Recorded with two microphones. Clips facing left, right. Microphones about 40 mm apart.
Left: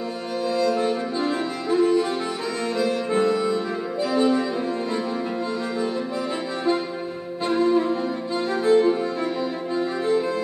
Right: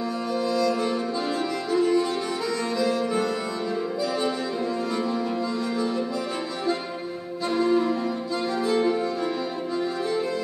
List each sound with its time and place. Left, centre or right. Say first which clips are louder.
0.5 s music: left 4 dB; left
7.4 s music: left 2 dB; left